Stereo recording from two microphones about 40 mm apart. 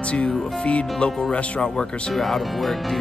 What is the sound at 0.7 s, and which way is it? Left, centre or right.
Speech, left.